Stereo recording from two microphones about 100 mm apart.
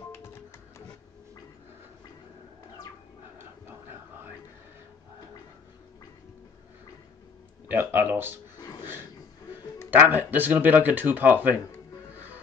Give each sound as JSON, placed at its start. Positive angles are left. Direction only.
{"t": 0.1, "sound": "music", "side_deg": 25}
{"t": 7.6, "sound": "speech", "side_deg": -20}
{"t": 9.8, "sound": "speech", "side_deg": -20}